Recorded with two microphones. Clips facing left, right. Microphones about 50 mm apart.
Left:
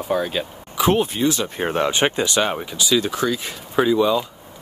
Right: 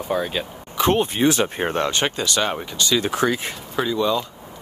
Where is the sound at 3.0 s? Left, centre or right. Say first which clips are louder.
Right 1 dB; right.